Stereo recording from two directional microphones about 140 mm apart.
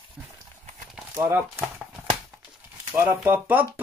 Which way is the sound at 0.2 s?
5° right (ahead or behind).